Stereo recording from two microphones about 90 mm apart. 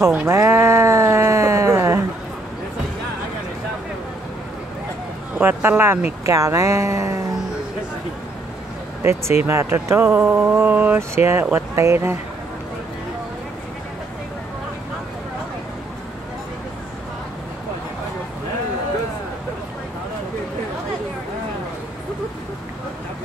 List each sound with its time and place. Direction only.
0.3 s a sound: 30° right (ahead or behind)
5.4 s speech: 25° right (ahead or behind)
9.0 s speech: 30° right (ahead or behind)